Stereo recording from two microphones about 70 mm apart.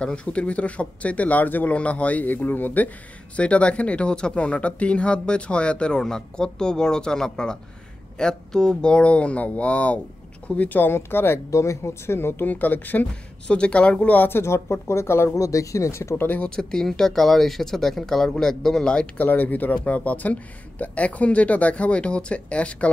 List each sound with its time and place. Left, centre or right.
0.0 s speech: centre; by 11.4 s left
11.5 s speech: left
14.4 s speech: left
16.2 s speech: left
16.4 s speech: centre
19.1 s speech: left